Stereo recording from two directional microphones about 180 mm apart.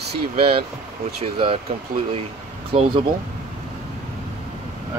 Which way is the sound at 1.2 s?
30° right (ahead or behind).